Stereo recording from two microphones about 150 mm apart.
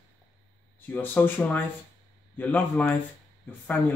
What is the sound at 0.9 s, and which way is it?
Speech, 10° left (ahead or behind).